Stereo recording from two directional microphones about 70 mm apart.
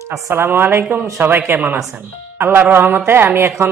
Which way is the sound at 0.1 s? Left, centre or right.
Right.